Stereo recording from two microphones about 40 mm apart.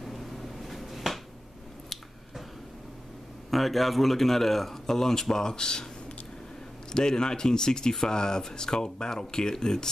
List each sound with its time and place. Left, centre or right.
0.0 s finger snapping: centre
3.4 s speech: centre
6.9 s speech: centre